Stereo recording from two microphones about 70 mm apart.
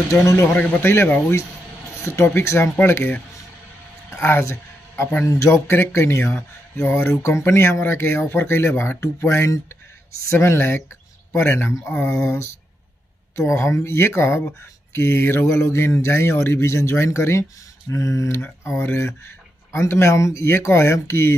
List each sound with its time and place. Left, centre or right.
0.1 s speech: left
0.6 s speech: left
4.2 s speech: left
4.5 s a sound: left
5.2 s speech: left
18.9 s speech: left